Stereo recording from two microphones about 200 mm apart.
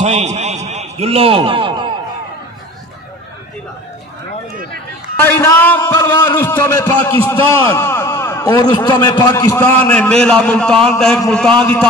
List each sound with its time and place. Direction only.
0.0 s a man's voice: 35° right (ahead or behind)
5.2 s a man's voice: 10° left (ahead or behind)